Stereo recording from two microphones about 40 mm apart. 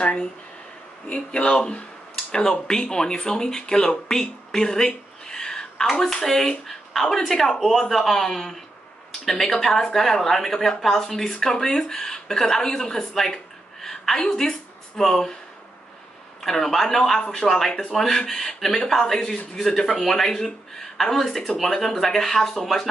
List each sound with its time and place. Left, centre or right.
1.1 s speech: left
2.1 s a sound: centre
2.8 s speech: left
5.9 s speech: centre
16.4 s speech: centre